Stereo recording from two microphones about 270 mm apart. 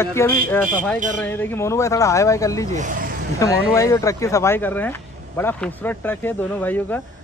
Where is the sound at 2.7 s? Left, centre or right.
Right.